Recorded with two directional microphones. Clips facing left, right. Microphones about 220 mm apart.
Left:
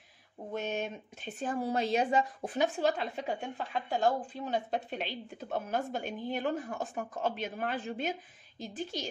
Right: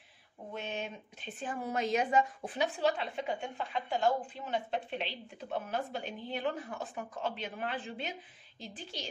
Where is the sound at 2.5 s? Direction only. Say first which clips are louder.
Left 3 dB; 45° left (ahead or behind).